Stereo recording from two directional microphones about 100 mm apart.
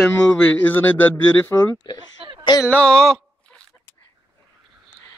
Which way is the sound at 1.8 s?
45° left (ahead or behind).